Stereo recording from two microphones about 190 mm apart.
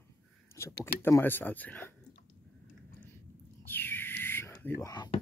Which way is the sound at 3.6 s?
10° left (ahead or behind).